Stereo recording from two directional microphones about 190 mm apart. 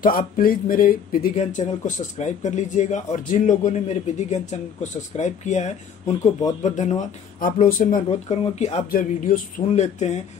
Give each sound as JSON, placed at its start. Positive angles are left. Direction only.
{"t": 0.0, "sound": "speech", "side_deg": 50}
{"t": 8.1, "sound": "speech", "side_deg": 35}